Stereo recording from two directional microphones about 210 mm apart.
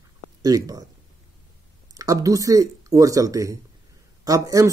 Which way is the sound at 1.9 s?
15° right (ahead or behind).